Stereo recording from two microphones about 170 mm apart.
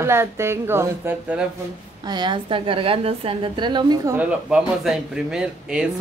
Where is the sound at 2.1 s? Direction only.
25° right (ahead or behind).